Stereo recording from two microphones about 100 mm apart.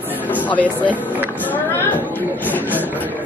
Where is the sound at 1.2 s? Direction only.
20° left (ahead or behind).